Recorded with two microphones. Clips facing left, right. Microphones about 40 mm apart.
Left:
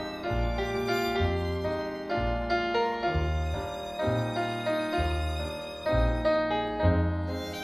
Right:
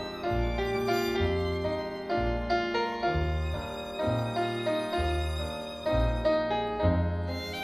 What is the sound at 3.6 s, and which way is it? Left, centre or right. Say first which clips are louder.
Music: left 2 dB; left.